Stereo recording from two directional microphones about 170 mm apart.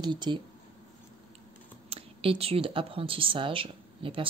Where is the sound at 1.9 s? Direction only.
35° right (ahead or behind).